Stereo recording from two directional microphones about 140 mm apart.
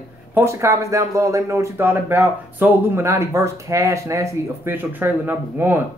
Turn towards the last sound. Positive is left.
turn(degrees=-15)  # may be behind; listen again after turning